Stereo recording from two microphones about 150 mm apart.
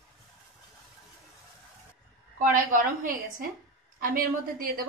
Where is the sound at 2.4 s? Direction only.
65° right (ahead or behind).